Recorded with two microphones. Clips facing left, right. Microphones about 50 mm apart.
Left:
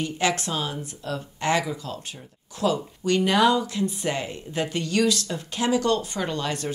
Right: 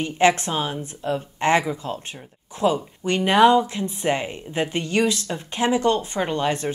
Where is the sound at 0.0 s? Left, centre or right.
Right.